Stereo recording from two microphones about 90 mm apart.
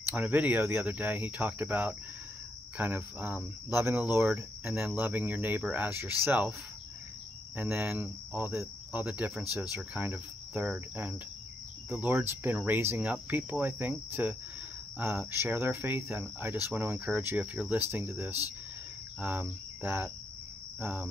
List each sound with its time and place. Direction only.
0.1 s cricket: 20° right (ahead or behind)
7.5 s cricket: 20° right (ahead or behind)